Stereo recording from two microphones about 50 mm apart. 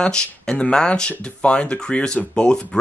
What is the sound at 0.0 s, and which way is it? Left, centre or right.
Speech, centre.